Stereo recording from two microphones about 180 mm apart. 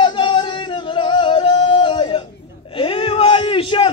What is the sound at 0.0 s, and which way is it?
Music, 25° left (ahead or behind).